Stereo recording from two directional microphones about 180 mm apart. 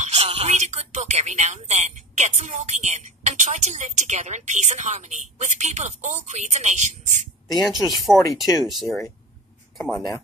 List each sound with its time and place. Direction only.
0.0 s speech: 35° right (ahead or behind)
7.9 s speech: centre (ahead or behind)